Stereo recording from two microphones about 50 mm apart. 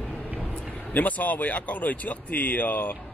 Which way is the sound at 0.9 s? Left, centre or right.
Left.